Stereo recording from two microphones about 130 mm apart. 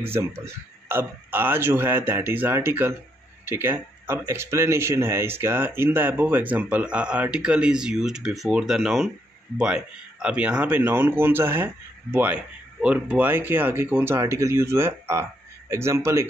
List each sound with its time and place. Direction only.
0.0 s a man's voice: 20° right (ahead or behind)